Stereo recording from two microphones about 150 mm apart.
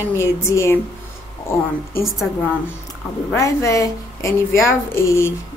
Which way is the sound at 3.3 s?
20° left (ahead or behind).